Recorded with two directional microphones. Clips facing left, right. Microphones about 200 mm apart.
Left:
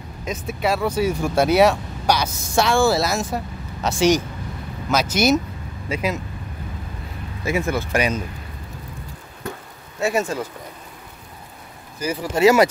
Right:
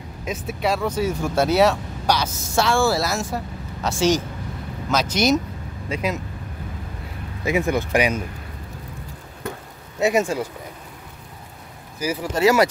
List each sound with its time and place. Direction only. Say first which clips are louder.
0.2 s speech: left 1 dB; 5° right (ahead or behind)
7.4 s speech: right 1 dB; 15° right (ahead or behind)
9.9 s speech: right 2 dB; 15° right (ahead or behind)
12.0 s speech: even; 5° right (ahead or behind)
12.4 s speech: left 3 dB; 20° left (ahead or behind)